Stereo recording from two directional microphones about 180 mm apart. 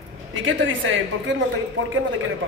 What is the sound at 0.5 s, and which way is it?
Speech, 90° right.